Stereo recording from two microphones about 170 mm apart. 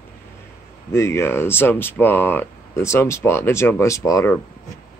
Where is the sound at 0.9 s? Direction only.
15° left (ahead or behind).